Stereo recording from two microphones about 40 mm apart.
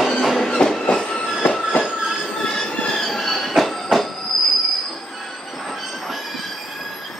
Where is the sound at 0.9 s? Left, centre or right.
Left.